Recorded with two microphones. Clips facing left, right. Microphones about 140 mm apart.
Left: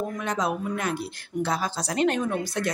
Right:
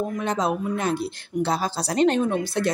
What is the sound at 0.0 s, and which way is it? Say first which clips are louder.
Speech: right 3 dB; 30° right (ahead or behind).